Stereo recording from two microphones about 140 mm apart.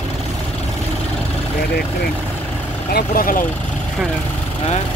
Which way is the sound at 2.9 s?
90° left.